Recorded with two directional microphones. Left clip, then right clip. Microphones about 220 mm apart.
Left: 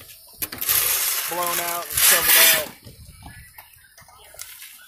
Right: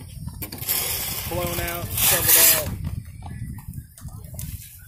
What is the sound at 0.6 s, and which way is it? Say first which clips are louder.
Mechanisms: left 5 dB; 10° left (ahead or behind).